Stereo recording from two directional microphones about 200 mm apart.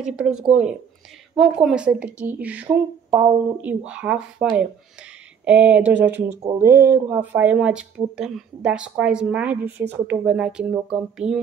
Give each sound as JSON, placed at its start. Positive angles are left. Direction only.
{"t": 0.0, "sound": "speech", "side_deg": -5}